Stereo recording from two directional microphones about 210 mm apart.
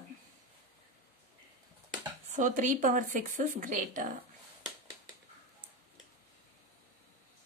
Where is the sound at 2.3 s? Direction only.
35° right (ahead or behind).